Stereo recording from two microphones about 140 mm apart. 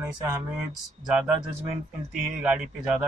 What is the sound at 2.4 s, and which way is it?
Speech, 10° right (ahead or behind).